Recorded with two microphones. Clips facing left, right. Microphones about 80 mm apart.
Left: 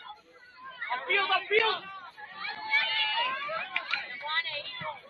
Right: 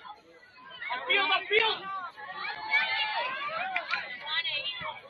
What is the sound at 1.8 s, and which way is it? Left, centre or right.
Chatter, right.